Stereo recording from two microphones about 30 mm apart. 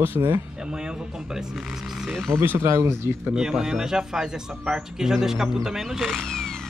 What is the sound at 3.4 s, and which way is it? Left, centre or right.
A man's voice, right.